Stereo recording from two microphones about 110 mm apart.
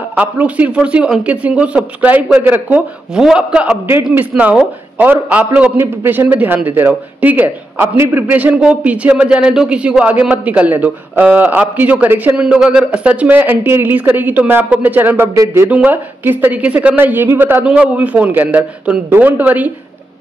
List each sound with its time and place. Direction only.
0.1 s speech: 15° right (ahead or behind)
15.7 s speech: 15° right (ahead or behind)